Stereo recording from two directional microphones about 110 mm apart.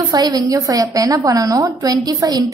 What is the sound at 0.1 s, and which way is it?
A woman's voice, 35° right (ahead or behind).